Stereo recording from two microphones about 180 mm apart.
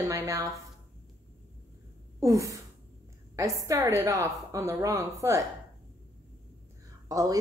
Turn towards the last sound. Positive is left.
turn(degrees=-20)  # may be behind; listen again after turning